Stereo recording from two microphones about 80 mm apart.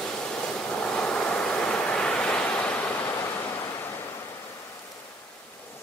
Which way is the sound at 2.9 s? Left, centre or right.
Left.